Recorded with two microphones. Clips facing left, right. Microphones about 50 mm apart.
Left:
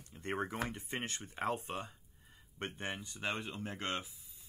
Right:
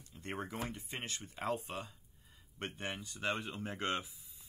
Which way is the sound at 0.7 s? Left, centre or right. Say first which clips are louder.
Left 2 dB; left.